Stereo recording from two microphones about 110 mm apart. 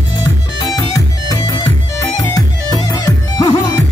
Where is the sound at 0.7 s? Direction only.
35° left (ahead or behind).